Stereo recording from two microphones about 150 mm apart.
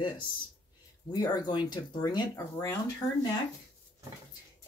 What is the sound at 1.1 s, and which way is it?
Speech, 25° left (ahead or behind).